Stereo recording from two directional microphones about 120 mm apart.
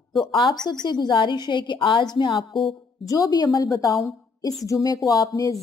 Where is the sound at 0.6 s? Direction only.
35° left (ahead or behind).